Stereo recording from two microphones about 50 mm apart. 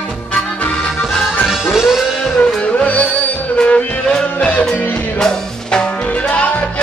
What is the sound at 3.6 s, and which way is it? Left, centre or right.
Music, centre.